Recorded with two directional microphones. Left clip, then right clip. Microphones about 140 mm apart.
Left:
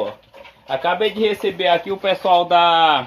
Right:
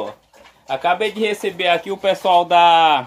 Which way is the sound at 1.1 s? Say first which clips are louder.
Left 1 dB; 50° right (ahead or behind).